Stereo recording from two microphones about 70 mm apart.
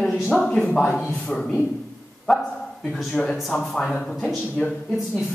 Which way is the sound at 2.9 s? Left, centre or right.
Centre.